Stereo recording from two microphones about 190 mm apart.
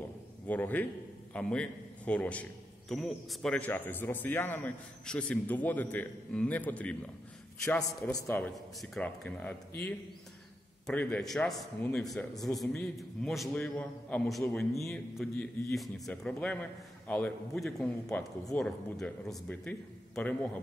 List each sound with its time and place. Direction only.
0.5 s a man's voice: 10° left (ahead or behind)